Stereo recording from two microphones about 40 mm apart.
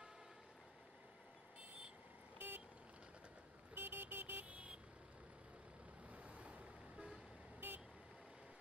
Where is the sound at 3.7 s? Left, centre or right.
Right.